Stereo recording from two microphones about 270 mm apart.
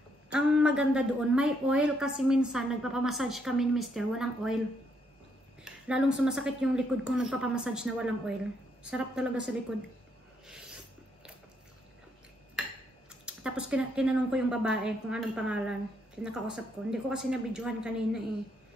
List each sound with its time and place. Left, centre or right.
0.3 s a woman's voice: centre
5.6 s a woman's voice: centre
10.4 s a sound: centre
13.2 s a woman's voice: centre